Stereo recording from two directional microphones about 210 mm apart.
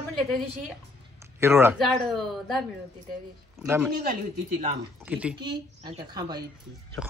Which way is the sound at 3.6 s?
10° right (ahead or behind).